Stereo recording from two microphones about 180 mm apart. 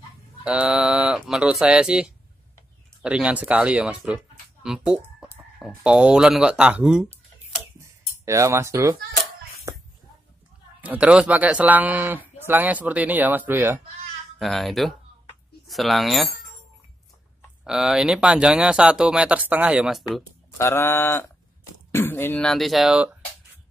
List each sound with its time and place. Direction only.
0.5 s speech: 5° right (ahead or behind)
8.3 s speech: 15° right (ahead or behind)
10.8 s speech: 5° right (ahead or behind)
14.4 s speech: centre (ahead or behind)
17.6 s speech: 5° right (ahead or behind)
20.5 s speech: 15° left (ahead or behind)